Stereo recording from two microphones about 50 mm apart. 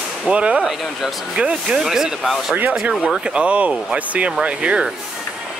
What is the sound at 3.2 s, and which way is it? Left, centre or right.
Speech, right.